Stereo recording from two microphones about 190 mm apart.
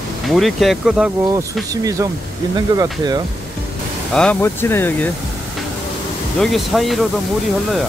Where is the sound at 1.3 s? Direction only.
20° right (ahead or behind).